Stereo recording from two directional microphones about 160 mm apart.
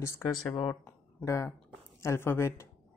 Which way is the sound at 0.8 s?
20° left (ahead or behind).